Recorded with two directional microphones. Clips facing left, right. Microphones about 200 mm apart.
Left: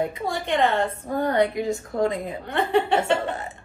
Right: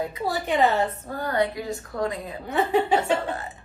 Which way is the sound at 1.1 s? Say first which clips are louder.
Left 5 dB; 25° left (ahead or behind).